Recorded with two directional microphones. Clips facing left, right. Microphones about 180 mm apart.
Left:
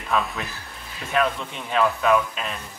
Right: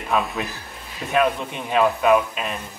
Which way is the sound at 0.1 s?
20° right (ahead or behind).